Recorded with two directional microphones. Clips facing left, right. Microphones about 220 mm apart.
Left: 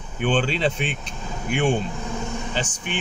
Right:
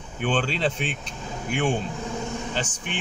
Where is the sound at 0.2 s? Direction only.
5° right (ahead or behind).